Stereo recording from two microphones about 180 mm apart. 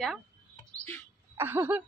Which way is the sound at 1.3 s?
10° right (ahead or behind).